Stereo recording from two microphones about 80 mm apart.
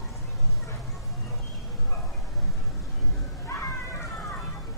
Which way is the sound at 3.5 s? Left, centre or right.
Left.